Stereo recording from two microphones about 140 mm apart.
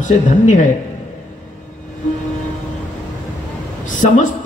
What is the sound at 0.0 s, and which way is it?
Speech, 65° left (ahead or behind).